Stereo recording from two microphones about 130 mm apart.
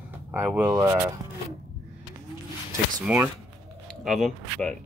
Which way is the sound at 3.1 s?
10° right (ahead or behind).